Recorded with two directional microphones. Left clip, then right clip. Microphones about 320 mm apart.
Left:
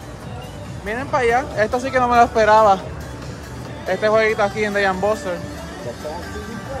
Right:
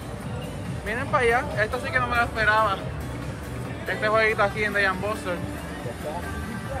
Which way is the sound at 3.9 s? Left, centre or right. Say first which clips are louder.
Left 5 dB; centre.